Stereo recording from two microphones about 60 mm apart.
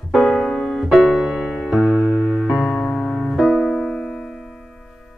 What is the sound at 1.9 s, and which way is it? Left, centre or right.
Music, left.